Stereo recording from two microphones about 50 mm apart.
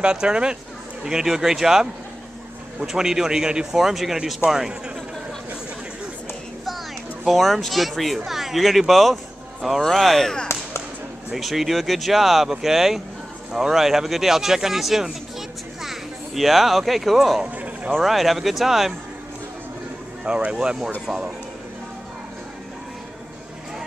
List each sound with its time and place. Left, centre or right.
0.0 s speech: centre
2.9 s speech: centre
7.2 s speech: centre
11.3 s speech: centre
20.2 s speech: centre